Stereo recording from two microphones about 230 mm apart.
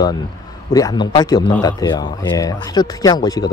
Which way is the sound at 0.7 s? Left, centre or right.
Centre.